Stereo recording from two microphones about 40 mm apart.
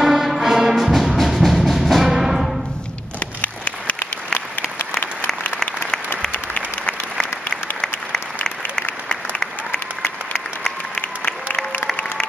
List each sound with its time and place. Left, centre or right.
0.0 s music: centre
0.9 s music: centre
3.3 s a sound: left
6.5 s applause: left